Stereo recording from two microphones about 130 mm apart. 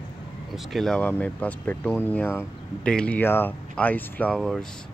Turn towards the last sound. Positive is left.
turn(degrees=5)  # may be behind; listen again after turning